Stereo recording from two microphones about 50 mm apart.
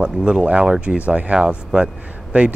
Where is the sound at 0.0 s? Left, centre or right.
Centre.